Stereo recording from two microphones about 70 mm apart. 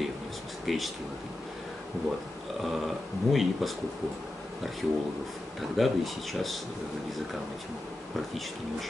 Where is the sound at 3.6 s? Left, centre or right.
Centre.